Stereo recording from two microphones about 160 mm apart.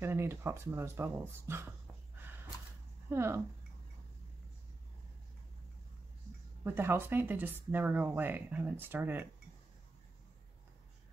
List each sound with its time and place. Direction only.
0.0 s speech: 15° right (ahead or behind)
3.1 s speech: 15° right (ahead or behind)
6.6 s speech: 15° right (ahead or behind)